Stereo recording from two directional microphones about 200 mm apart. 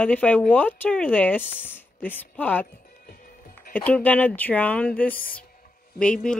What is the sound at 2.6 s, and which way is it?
Music, 45° left (ahead or behind).